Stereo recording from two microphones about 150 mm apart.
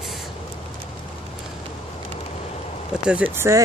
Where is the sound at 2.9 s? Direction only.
5° right (ahead or behind).